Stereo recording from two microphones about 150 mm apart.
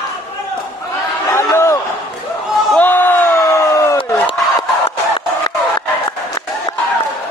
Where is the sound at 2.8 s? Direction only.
15° left (ahead or behind).